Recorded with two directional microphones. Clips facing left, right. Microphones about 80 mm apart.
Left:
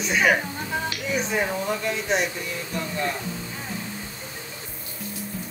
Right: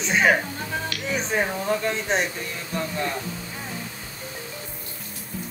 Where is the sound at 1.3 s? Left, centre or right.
Right.